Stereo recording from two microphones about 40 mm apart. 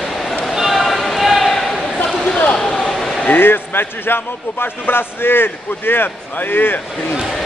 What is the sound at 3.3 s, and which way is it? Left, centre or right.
A man's voice, left.